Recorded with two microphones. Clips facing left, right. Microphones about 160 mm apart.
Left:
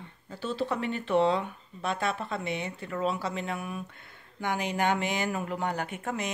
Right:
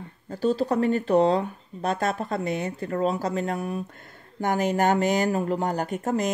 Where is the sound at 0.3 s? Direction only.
40° right (ahead or behind).